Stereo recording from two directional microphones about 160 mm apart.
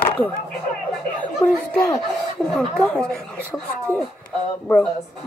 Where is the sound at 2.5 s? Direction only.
Centre (ahead or behind).